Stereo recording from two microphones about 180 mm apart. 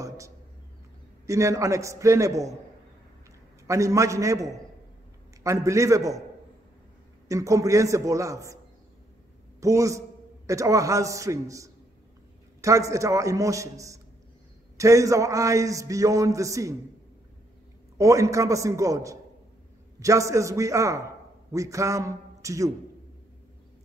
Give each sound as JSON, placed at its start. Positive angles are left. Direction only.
{"t": 1.2, "sound": "a man's voice", "side_deg": -15}
{"t": 3.6, "sound": "a man's voice", "side_deg": -15}
{"t": 7.2, "sound": "a man's voice", "side_deg": -15}
{"t": 9.6, "sound": "a man's voice", "side_deg": -15}
{"t": 17.9, "sound": "a man's voice", "side_deg": -15}